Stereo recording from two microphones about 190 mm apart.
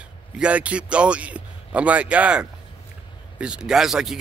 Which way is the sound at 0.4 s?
5° right (ahead or behind).